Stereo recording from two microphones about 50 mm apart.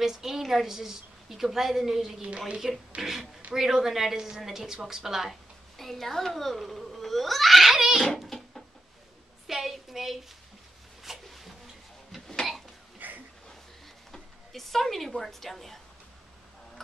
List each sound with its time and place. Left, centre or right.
0.0 s a woman's voice: centre
2.2 s a woman's voice: right
3.0 s a woman's voice: centre
8.0 s a sound: centre
9.5 s a woman's voice: centre
11.0 s rub: centre
12.3 s cough: centre
13.0 s a sound: right
14.1 s speech: centre